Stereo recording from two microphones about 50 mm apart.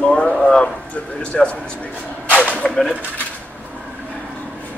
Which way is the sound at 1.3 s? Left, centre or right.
Centre.